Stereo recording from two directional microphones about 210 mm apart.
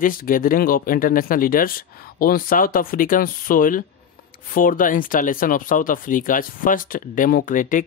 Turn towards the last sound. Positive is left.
turn(degrees=40)  # may be behind; listen again after turning